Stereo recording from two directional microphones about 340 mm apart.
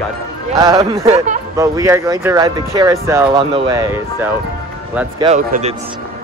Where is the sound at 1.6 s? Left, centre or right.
Centre.